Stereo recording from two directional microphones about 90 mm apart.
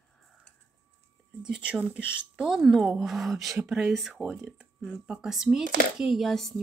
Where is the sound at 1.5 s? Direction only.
15° right (ahead or behind).